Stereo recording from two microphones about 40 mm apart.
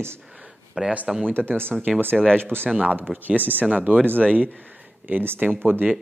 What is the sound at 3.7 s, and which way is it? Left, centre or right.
Speech, right.